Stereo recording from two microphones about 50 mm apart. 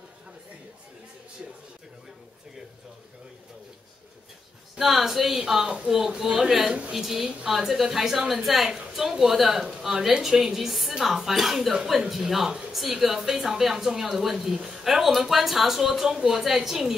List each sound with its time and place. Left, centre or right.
4.7 s speech: centre
5.3 s a woman's voice: centre
5.9 s a woman's voice: centre